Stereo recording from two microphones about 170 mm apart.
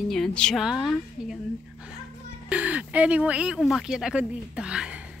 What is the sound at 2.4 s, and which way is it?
Speech, 5° right (ahead or behind).